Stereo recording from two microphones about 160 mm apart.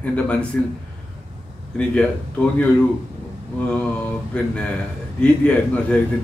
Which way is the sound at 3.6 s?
10° left (ahead or behind).